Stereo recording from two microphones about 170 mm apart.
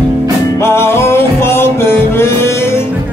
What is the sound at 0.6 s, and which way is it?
Music, 15° left (ahead or behind).